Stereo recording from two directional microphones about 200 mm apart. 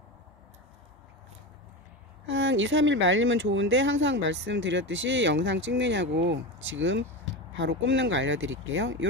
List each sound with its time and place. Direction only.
2.2 s speech: 70° right (ahead or behind)